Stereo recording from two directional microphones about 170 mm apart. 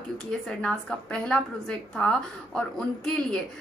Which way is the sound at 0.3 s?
5° left (ahead or behind).